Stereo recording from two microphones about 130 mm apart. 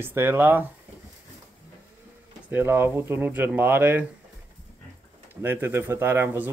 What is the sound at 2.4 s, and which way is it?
Speech, 15° right (ahead or behind).